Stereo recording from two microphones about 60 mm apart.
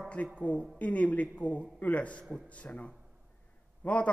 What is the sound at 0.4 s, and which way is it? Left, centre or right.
A man's voice, left.